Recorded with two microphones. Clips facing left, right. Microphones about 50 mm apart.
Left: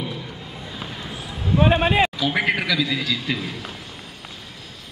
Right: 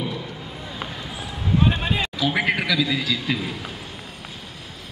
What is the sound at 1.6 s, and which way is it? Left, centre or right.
Speech, left.